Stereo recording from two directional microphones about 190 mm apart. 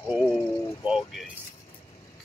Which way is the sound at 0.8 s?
Centre (ahead or behind).